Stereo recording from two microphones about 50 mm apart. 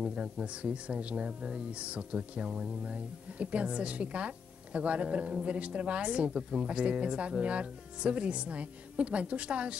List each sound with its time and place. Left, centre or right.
0.0 s speech: centre
2.8 s speech: right